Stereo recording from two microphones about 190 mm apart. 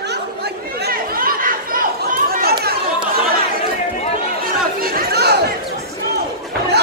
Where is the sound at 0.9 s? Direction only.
50° right (ahead or behind).